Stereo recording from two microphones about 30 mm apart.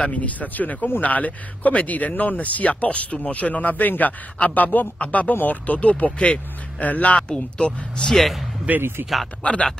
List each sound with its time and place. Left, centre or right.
0.1 s speech: left
4.6 s a man's voice: left
4.9 s speech: left
6.1 s speech: left
6.8 s speech: left
7.2 s speech: left
9.4 s speech: left